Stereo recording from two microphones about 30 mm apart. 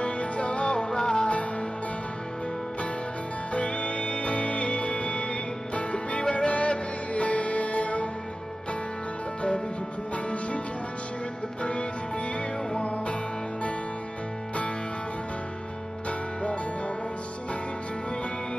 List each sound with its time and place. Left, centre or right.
0.0 s music: left
0.8 s music: left
3.5 s music: left
10.1 s music: left
12.7 s music: left
16.1 s music: left